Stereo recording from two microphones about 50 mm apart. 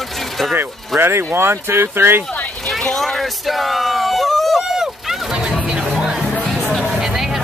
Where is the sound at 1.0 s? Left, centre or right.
Right.